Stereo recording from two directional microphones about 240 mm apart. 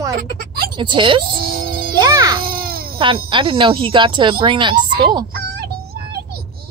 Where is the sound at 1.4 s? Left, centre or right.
Right.